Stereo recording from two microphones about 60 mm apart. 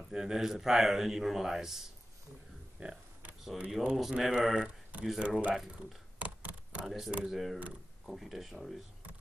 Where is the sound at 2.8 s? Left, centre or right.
Centre.